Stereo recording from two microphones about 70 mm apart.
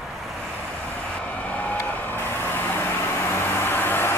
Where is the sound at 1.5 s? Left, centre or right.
Left.